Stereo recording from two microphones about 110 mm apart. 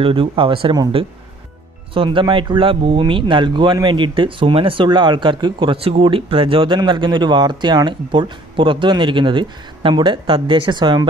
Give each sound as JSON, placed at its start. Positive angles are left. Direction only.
{"t": 0.0, "sound": "speech", "side_deg": -55}
{"t": 2.0, "sound": "speech", "side_deg": -50}